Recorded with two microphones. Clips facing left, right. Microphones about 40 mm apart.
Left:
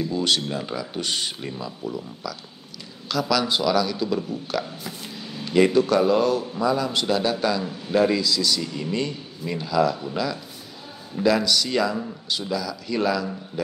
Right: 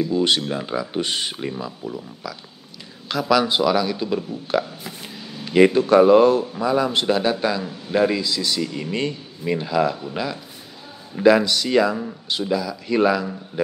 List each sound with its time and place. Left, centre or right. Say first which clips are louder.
0.0 s speech: right 4 dB; centre
3.1 s speech: right 4 dB; right
8.3 s speech: even; right